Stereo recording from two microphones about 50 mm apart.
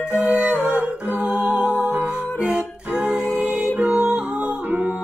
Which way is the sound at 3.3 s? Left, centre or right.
Right.